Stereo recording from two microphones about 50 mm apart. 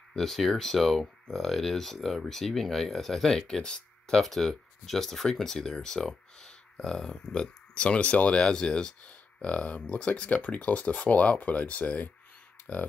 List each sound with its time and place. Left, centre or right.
0.1 s speech: centre; by 12.8 s left